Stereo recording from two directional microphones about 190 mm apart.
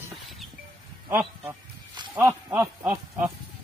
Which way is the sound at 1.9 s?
25° right (ahead or behind).